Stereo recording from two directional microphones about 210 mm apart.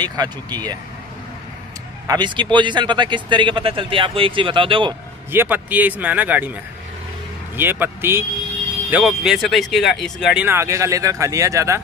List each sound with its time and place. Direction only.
0.0 s speech: 20° right (ahead or behind)
2.0 s speech: 20° right (ahead or behind)
5.3 s speech: 10° right (ahead or behind)
10.4 s speech: 15° right (ahead or behind)